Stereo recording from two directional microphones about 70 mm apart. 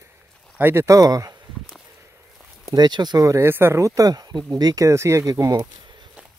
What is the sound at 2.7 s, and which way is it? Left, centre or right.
Speech, right.